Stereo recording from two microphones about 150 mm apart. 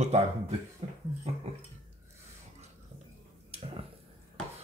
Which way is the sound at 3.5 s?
40° right (ahead or behind).